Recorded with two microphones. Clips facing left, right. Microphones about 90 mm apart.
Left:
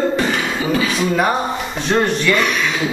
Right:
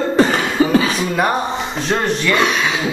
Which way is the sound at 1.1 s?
Centre (ahead or behind).